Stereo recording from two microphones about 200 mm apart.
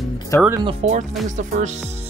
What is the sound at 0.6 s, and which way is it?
Speech, 30° right (ahead or behind).